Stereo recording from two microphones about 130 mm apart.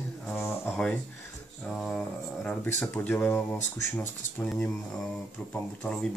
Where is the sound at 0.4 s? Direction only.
20° left (ahead or behind).